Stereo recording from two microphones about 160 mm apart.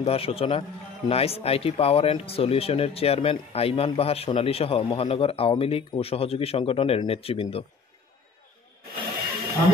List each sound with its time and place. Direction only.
0.0 s a man's voice: 40° left (ahead or behind)